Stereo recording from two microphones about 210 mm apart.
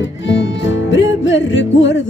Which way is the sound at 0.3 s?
60° left (ahead or behind).